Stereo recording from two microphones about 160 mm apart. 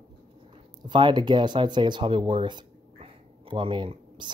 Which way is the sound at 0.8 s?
30° right (ahead or behind).